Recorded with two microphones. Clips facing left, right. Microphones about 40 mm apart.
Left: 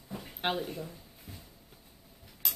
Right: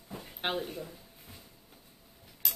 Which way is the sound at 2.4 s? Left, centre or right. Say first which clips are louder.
Even; centre.